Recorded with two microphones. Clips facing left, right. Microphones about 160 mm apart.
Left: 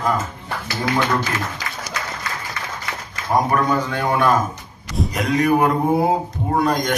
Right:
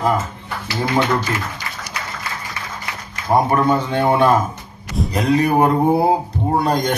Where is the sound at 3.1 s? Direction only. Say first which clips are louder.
Right 2 dB; 30° right (ahead or behind).